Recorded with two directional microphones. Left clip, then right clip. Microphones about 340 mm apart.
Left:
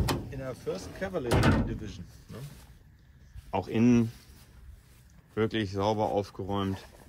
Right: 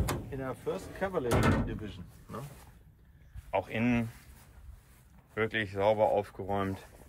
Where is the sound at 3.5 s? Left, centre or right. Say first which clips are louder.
Left 4 dB; centre.